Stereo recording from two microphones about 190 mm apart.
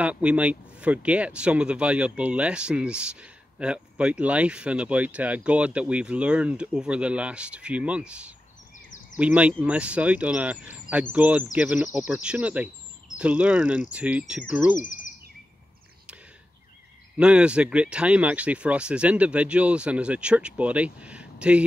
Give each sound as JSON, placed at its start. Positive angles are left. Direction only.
{"t": 0.0, "sound": "speech", "side_deg": -5}
{"t": 14.8, "sound": "chirp", "side_deg": 40}
{"t": 17.2, "sound": "speech", "side_deg": -5}